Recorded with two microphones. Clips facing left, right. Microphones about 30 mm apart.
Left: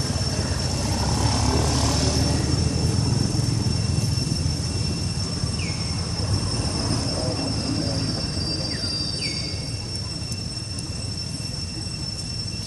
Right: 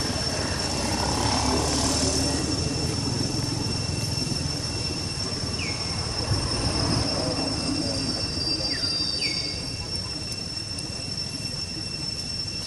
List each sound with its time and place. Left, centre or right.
0.0 s vehicle: right
1.6 s vehicle: centre
6.7 s vehicle: right
7.1 s vehicle: centre